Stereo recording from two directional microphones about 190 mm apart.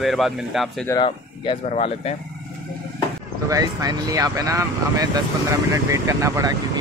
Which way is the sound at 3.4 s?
20° right (ahead or behind).